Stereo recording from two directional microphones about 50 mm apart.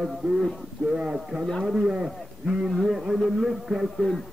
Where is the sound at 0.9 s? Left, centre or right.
Centre.